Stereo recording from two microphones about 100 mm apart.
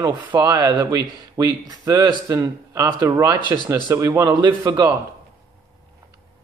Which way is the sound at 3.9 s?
30° right (ahead or behind).